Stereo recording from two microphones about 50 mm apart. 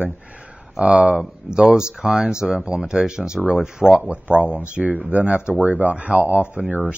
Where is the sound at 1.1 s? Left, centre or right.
Centre.